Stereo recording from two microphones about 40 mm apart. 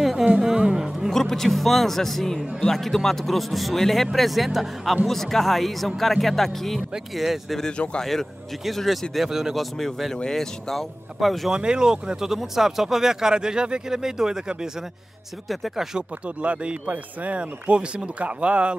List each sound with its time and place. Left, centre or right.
0.4 s a sound: centre
1.1 s speech: centre
7.7 s speech: left
8.0 s speech: centre
8.6 s speech: centre
9.6 s speech: centre
11.1 s speech: centre
11.5 s speech: right
15.4 s speech: centre
16.4 s speech: right